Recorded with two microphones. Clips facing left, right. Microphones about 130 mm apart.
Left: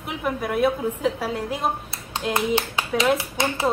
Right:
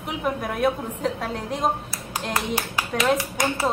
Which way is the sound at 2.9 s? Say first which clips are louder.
Left 1 dB; 5° left (ahead or behind).